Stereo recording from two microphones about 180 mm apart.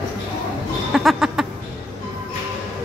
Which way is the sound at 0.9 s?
5° right (ahead or behind).